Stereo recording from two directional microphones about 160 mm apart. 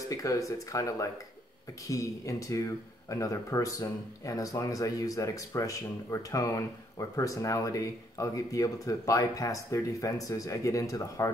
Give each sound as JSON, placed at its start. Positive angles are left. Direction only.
{"t": 0.0, "sound": "speech", "side_deg": 20}